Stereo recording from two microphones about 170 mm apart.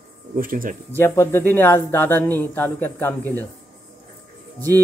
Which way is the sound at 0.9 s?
15° left (ahead or behind).